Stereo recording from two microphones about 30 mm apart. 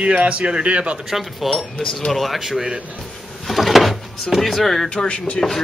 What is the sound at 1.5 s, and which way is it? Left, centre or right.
Speech, left.